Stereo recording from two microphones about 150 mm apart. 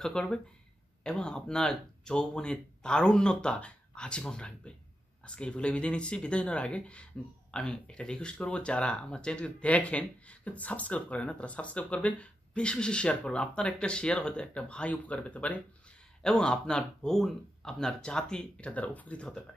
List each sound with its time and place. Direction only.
0.0 s speech: 5° left (ahead or behind)